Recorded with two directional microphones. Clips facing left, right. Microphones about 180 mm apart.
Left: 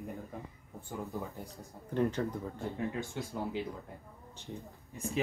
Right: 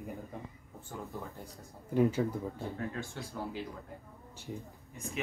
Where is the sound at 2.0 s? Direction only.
5° right (ahead or behind).